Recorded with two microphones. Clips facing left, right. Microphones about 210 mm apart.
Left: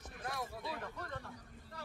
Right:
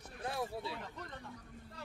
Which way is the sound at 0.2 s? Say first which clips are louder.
Right 4 dB; 25° right (ahead or behind).